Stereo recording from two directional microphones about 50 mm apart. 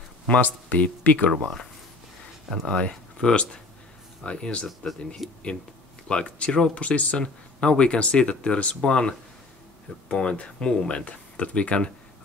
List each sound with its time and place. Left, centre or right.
0.4 s speech: left
2.6 s speech: centre
4.6 s speech: centre
6.0 s speech: centre